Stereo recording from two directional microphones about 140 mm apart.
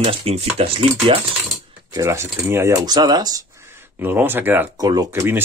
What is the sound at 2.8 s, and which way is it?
Speech, 30° right (ahead or behind).